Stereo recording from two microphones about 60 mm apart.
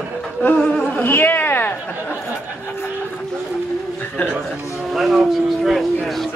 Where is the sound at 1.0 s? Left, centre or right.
Left.